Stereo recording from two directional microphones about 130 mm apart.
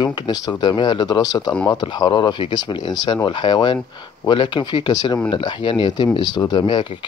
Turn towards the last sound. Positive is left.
turn(degrees=40)  # may be behind; listen again after turning